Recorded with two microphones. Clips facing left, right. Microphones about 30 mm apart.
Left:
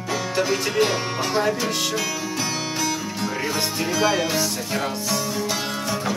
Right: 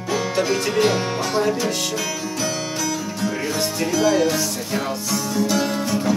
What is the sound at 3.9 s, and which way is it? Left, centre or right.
Music, centre.